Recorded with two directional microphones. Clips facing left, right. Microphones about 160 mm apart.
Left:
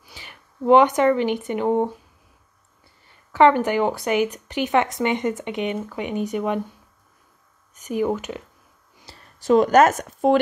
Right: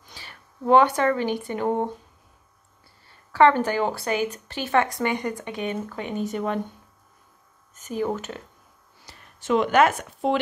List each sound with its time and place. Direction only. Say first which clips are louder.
0.0 s speech: left 1 dB; 15° left (ahead or behind)
3.1 s speech: left 2 dB; 15° left (ahead or behind)
7.7 s speech: left 4 dB; 15° left (ahead or behind)
9.0 s speech: left 6 dB; 35° left (ahead or behind)